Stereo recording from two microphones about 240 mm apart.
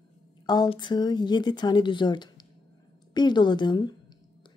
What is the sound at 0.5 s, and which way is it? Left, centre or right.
A woman's voice, centre.